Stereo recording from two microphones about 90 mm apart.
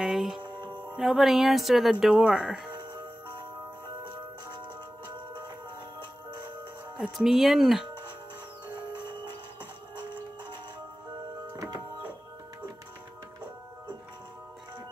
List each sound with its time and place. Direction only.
0.0 s music: 5° right (ahead or behind)
0.9 s speech: 5° right (ahead or behind)
2.7 s music: 60° right (ahead or behind)
5.0 s music: 60° right (ahead or behind)
7.0 s speech: 5° right (ahead or behind)
8.7 s music: 60° right (ahead or behind)
11.5 s music: 40° right (ahead or behind)